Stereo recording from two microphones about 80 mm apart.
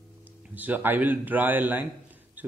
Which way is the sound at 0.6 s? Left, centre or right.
Right.